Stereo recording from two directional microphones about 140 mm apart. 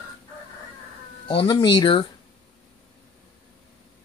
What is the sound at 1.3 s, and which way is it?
Speech, 40° left (ahead or behind).